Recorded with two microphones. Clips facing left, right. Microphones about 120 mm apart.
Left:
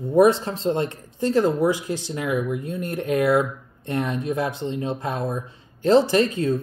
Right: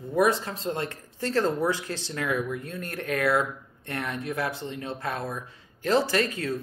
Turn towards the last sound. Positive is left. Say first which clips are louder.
# left 7 dB
turn(degrees=25)  # may be behind; listen again after turning